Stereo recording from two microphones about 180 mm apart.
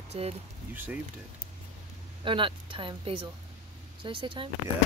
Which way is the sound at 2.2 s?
30° right (ahead or behind).